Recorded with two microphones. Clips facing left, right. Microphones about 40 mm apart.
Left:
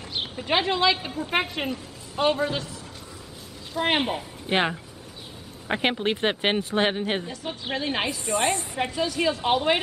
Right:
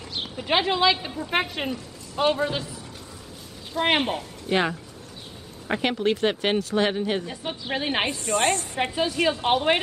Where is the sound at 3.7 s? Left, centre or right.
Centre.